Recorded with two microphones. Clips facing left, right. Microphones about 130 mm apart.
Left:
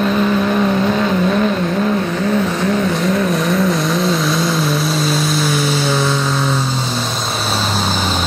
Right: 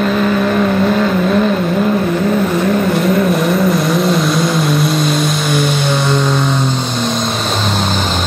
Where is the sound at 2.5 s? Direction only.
Centre (ahead or behind).